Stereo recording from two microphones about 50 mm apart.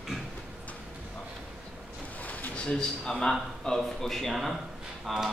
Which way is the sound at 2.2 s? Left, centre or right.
Left.